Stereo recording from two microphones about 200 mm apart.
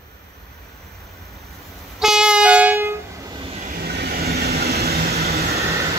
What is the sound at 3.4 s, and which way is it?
Vehicle, 30° right (ahead or behind).